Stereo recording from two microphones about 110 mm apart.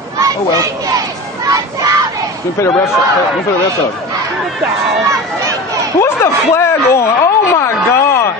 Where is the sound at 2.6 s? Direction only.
25° left (ahead or behind).